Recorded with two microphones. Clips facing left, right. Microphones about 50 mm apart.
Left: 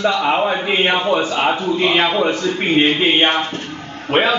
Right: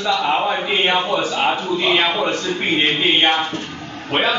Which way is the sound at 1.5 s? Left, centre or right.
Centre.